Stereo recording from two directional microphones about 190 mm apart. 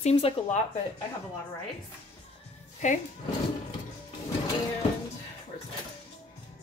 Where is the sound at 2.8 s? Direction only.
40° left (ahead or behind).